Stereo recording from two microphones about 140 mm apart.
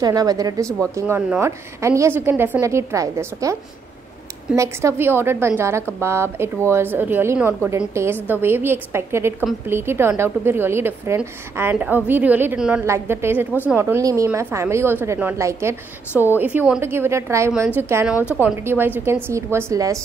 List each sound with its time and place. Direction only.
0.0 s a woman's voice: 25° right (ahead or behind)
4.6 s a woman's voice: 20° right (ahead or behind)
12.8 s a woman's voice: 20° right (ahead or behind)